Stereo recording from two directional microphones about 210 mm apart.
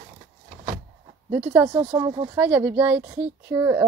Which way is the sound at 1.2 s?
10° right (ahead or behind).